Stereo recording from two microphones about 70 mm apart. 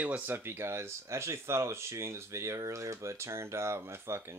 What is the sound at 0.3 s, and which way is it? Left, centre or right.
Speech, right.